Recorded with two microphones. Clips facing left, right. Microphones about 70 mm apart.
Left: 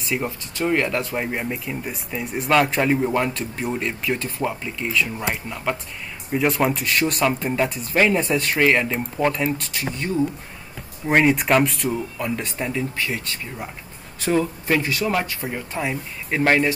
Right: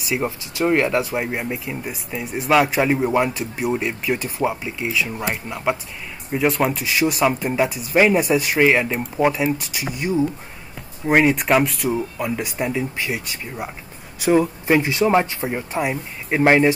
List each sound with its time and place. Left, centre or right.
0.0 s speech: centre
6.3 s speech: centre